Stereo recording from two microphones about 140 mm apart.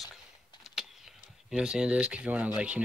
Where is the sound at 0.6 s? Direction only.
Centre (ahead or behind).